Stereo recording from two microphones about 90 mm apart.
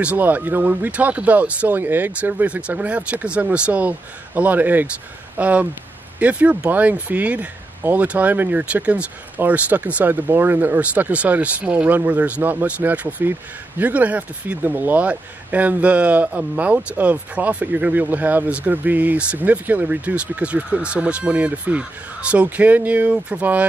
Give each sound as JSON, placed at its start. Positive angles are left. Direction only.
{"t": 0.0, "sound": "speech", "side_deg": -15}